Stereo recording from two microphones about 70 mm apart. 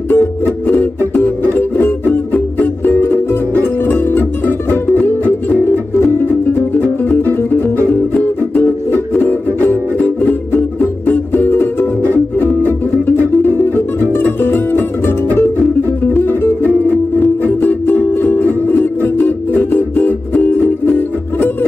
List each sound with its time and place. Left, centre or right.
0.1 s music: left